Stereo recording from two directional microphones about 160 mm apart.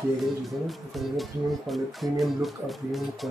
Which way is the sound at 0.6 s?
Centre (ahead or behind).